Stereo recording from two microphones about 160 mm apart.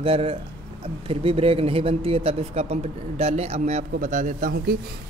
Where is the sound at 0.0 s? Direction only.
35° right (ahead or behind).